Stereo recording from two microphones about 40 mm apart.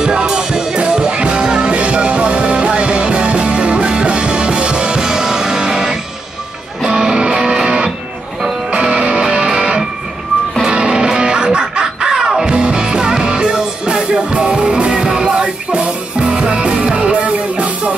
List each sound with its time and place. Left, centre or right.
0.0 s music: centre
0.7 s music: right